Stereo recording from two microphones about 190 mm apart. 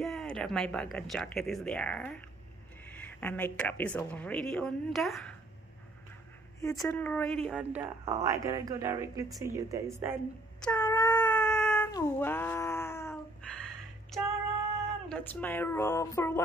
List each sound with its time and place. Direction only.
0.0 s speech: centre (ahead or behind)
6.8 s speech: 10° left (ahead or behind)
8.0 s speech: 15° right (ahead or behind)
10.6 s cat: 10° left (ahead or behind)
11.1 s wail: 5° left (ahead or behind)
13.5 s a sound: centre (ahead or behind)
15.0 s speech: 5° left (ahead or behind)